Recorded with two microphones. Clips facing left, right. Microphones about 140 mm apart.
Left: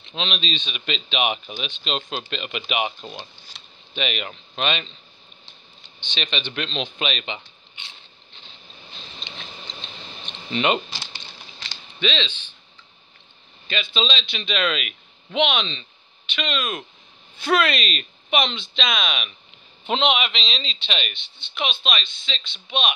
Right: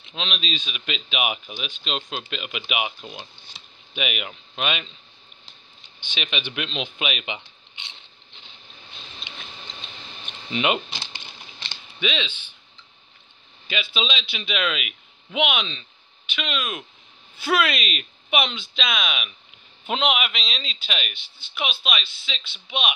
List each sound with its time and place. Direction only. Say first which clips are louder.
0.0 s speech: left 2 dB; centre (ahead or behind)
6.0 s speech: left 1 dB; 10° right (ahead or behind)
10.2 s speech: left 2 dB; 5° right (ahead or behind)
11.0 s a sound: even; 20° right (ahead or behind)
12.0 s speech: left 2 dB; 10° right (ahead or behind)
13.9 s speech: left 4 dB; 5° right (ahead or behind)